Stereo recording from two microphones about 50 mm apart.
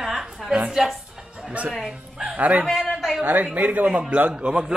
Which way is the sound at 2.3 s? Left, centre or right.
Right.